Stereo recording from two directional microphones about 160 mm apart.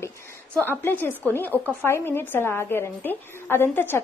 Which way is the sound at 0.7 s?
15° left (ahead or behind).